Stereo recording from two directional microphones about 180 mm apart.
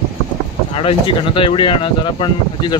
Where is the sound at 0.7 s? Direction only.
30° left (ahead or behind).